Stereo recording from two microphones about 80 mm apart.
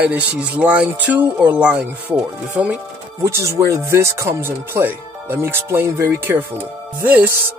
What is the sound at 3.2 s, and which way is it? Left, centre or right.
Speech, right.